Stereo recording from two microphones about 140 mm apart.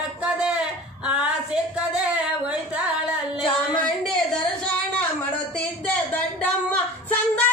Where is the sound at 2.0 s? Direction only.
10° right (ahead or behind).